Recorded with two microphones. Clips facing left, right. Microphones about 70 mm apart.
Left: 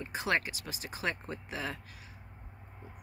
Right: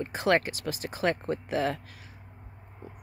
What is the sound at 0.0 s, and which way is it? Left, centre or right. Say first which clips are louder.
Speech: right 7 dB; right.